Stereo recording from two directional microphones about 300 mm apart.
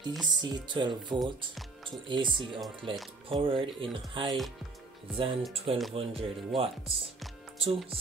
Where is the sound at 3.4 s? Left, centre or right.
Centre.